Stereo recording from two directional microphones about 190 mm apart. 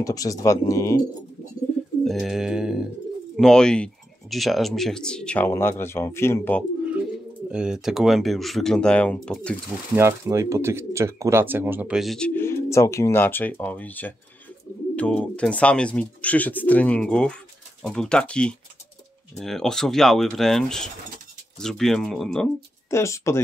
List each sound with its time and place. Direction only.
0.0 s speech: 20° left (ahead or behind)
2.0 s speech: centre (ahead or behind)
7.5 s speech: 5° right (ahead or behind)
9.9 s speech: 15° right (ahead or behind)
12.4 s speech: 15° left (ahead or behind)
22.8 s speech: 15° left (ahead or behind)